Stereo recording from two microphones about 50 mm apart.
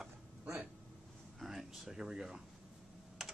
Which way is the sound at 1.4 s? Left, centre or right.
Centre.